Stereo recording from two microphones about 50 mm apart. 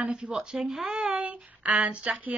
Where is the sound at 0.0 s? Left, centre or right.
Right.